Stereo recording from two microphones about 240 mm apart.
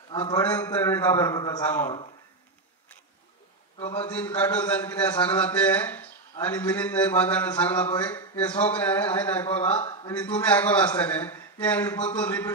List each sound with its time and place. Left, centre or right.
0.1 s a man's voice: centre
0.4 s a man's voice: centre
4.1 s a man's voice: centre
9.8 s a man's voice: left
10.4 s a man's voice: centre